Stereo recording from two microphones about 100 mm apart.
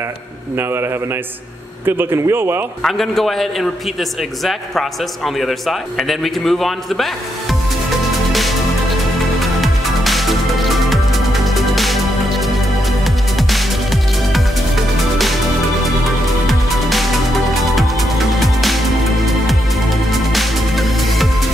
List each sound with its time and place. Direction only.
0.6 s a man's voice: 25° right (ahead or behind)
1.9 s a man's voice: 25° right (ahead or behind)
2.8 s a man's voice: centre (ahead or behind)
8.3 s music: centre (ahead or behind)
16.4 s music: centre (ahead or behind)
18.4 s music: centre (ahead or behind)